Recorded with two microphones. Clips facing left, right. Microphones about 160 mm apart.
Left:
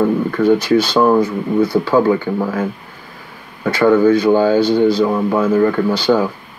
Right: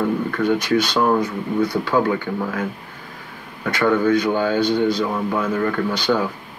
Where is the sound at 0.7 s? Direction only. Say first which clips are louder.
Left 5 dB; 30° left (ahead or behind).